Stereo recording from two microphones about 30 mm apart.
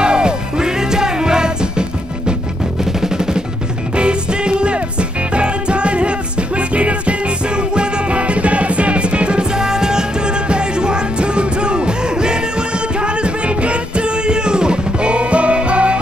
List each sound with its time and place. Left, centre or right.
0.0 s music: right
2.8 s music: centre
3.9 s music: right